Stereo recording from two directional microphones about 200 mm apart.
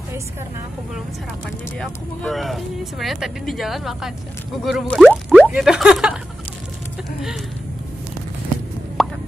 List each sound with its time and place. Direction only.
1.8 s speech: centre (ahead or behind)
9.0 s plop: centre (ahead or behind)